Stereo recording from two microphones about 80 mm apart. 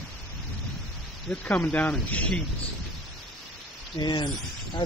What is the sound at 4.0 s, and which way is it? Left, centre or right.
Speech, left.